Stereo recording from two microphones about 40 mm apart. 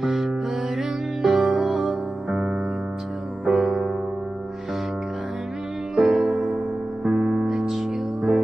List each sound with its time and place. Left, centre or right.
0.0 s music: centre
2.2 s music: right
3.4 s music: centre
5.9 s music: centre